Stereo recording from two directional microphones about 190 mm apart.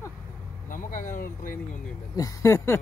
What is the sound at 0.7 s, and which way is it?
Speech, 45° left (ahead or behind).